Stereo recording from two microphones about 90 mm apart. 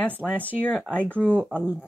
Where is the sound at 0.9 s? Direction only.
15° left (ahead or behind).